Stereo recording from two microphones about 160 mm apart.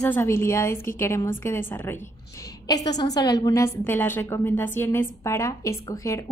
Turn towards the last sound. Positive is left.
turn(degrees=20)  # may be behind; listen again after turning